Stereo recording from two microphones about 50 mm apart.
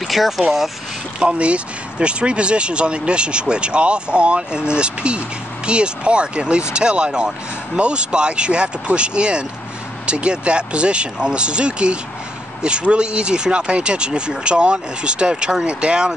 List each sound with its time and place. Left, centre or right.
0.1 s speech: centre
1.2 s speech: right